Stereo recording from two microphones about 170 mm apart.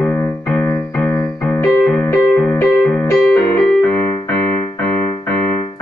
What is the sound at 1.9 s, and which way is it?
Music, 10° left (ahead or behind).